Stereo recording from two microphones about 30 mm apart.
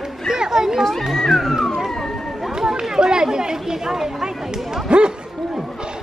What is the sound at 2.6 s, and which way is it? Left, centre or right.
Chatter, centre.